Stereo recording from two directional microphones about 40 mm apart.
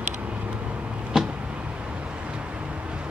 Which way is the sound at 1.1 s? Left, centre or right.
Centre.